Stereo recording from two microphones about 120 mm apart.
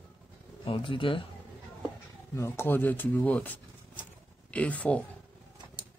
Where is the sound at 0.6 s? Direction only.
45° left (ahead or behind).